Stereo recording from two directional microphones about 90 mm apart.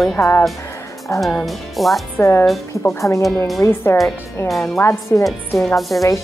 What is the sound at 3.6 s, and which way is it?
Speech, 25° left (ahead or behind).